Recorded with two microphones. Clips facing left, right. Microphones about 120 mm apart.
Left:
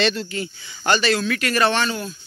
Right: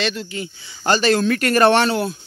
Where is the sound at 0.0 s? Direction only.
10° right (ahead or behind).